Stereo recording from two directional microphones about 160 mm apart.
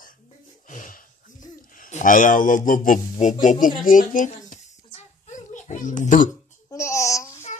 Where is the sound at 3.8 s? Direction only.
55° left (ahead or behind).